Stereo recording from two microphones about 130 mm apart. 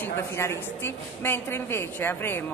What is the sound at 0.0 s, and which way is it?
A woman's voice, 20° left (ahead or behind).